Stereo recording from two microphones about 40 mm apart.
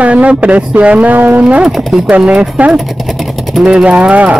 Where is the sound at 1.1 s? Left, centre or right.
Right.